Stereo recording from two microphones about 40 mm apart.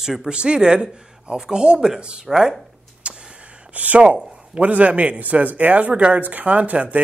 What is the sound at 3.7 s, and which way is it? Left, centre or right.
Speech, right.